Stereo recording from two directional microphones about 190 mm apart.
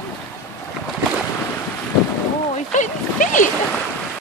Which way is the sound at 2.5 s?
40° left (ahead or behind).